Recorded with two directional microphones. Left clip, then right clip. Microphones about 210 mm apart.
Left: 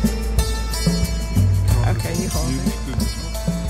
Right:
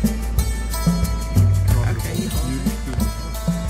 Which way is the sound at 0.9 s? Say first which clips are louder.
Left 1 dB; centre (ahead or behind).